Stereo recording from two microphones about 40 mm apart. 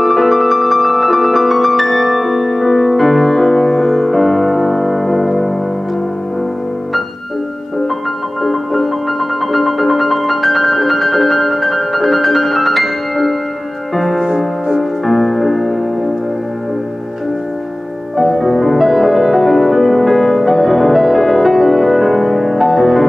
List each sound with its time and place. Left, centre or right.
0.0 s music: centre
9.5 s music: centre
14.2 s music: centre
14.8 s music: centre
18.1 s music: centre